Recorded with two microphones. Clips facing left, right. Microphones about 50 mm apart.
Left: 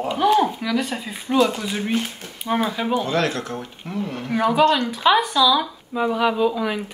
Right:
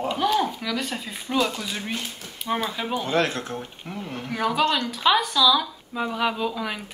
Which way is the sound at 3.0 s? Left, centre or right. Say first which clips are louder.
Left 2 dB; right.